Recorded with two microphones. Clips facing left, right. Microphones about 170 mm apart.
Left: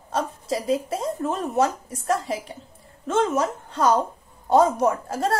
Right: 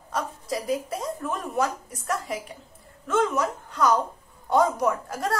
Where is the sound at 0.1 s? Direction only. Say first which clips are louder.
Left 3 dB; 25° left (ahead or behind).